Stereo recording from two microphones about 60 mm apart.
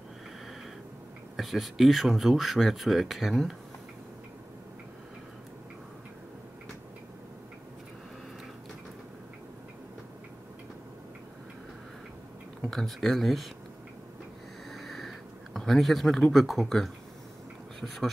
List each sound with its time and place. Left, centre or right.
1.3 s speech: centre
12.6 s speech: centre
14.7 s a sound: centre
17.7 s speech: centre